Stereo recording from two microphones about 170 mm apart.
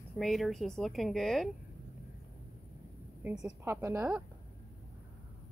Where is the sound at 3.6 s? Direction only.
15° right (ahead or behind).